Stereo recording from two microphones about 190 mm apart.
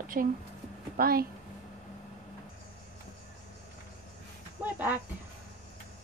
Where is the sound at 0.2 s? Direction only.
40° right (ahead or behind).